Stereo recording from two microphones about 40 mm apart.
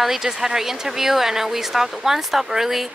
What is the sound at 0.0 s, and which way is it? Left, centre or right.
Speech, centre.